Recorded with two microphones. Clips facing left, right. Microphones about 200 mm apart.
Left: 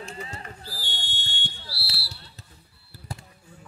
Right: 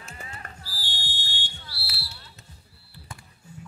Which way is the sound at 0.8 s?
20° left (ahead or behind).